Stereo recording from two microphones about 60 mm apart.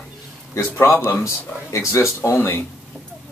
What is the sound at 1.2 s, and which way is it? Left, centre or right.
Speech, left.